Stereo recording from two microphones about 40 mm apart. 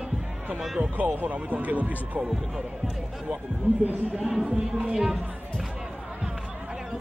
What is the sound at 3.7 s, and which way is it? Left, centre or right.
Speech, right.